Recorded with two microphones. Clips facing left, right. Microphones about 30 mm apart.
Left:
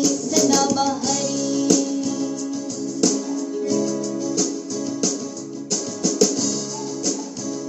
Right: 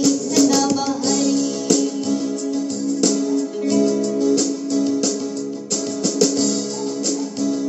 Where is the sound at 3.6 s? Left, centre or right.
Right.